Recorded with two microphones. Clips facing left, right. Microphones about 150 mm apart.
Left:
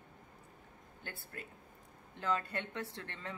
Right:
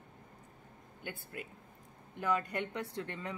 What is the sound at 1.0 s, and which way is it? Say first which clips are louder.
A woman's voice: right 4 dB; 15° right (ahead or behind).